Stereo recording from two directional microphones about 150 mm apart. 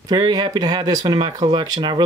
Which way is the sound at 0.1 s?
30° right (ahead or behind).